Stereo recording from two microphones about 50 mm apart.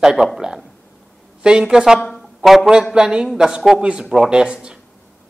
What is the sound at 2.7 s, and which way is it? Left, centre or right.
A woman's voice, centre.